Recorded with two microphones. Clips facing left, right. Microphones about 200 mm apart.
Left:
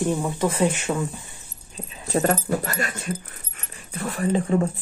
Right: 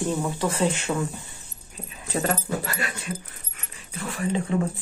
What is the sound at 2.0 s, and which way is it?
Speech, 40° left (ahead or behind).